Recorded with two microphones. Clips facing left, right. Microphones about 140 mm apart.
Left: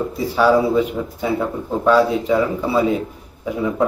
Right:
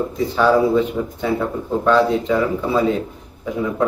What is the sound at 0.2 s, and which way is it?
A man's voice, 10° left (ahead or behind).